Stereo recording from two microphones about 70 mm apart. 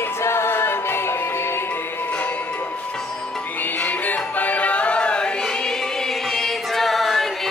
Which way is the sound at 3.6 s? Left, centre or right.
Left.